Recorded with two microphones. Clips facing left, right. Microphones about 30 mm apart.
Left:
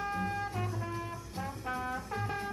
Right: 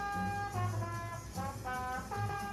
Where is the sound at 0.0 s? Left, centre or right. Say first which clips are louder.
Left 2 dB; left.